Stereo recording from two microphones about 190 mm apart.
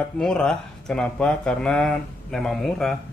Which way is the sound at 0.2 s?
5° left (ahead or behind).